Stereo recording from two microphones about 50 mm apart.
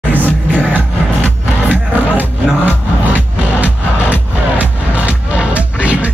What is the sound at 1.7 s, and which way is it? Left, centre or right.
Music, right.